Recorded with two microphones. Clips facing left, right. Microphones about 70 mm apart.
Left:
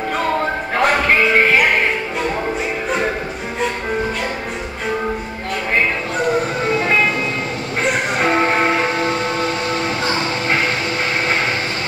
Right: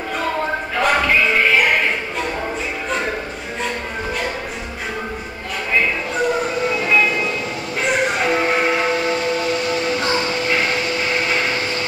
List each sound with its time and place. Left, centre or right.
0.7 s music: left
8.2 s train: left